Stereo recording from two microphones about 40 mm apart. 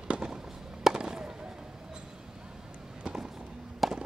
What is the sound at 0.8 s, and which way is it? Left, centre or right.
Fireworks, centre.